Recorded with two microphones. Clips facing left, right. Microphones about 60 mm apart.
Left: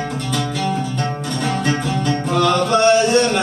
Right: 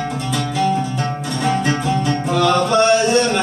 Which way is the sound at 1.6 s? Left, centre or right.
Centre.